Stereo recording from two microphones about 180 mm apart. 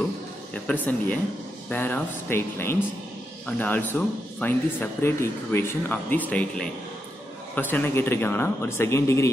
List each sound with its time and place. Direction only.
0.7 s speech: 10° left (ahead or behind)